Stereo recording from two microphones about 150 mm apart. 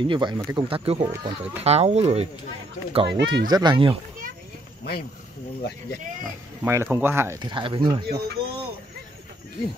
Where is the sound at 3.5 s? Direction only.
30° right (ahead or behind).